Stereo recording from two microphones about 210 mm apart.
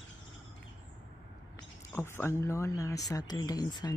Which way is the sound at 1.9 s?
10° left (ahead or behind).